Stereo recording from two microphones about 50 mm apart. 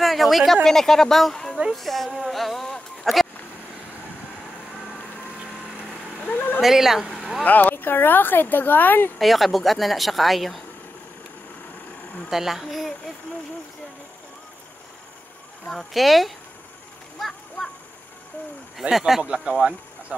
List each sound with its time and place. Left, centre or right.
0.0 s a sound: centre
0.7 s speech: centre
1.7 s a sound: centre
6.2 s a sound: left
6.6 s speech: centre
7.4 s speech: left
9.2 s speech: centre
12.3 s speech: centre
15.6 s speech: centre
17.2 s a sound: centre
18.8 s speech: centre
19.2 s speech: right